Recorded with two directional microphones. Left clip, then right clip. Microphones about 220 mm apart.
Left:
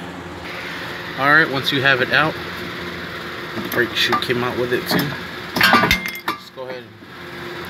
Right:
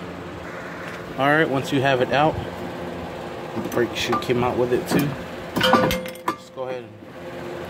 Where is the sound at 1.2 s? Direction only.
15° right (ahead or behind).